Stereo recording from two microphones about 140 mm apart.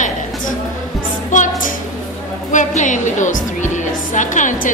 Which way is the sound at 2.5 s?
65° left (ahead or behind).